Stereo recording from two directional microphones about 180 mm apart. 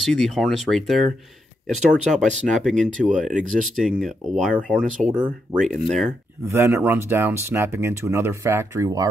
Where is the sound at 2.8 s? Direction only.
45° right (ahead or behind).